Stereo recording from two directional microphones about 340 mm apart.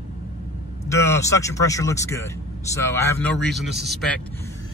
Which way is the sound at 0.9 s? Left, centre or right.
Centre.